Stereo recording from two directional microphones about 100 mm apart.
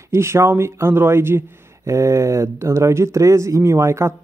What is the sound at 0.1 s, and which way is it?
Speech, 25° right (ahead or behind).